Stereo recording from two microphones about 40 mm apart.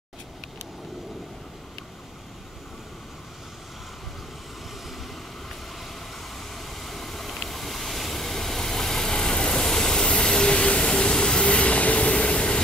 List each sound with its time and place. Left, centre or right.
6.3 s vehicle: centre; by 12.6 s left